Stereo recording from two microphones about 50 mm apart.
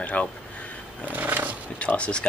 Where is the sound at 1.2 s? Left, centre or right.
Right.